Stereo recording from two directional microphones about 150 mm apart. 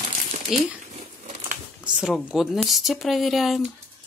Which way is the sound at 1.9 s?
5° right (ahead or behind).